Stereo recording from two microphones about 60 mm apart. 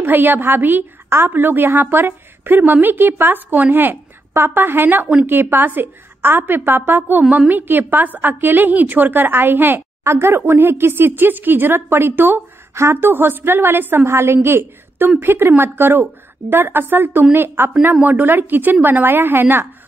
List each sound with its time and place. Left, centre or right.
0.0 s a woman's voice: right